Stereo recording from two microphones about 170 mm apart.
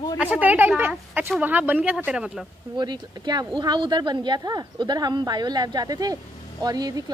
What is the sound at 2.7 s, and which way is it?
Speech, 25° right (ahead or behind).